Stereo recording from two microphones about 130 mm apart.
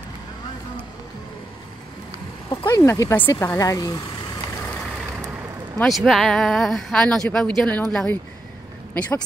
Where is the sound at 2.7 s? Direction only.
20° left (ahead or behind).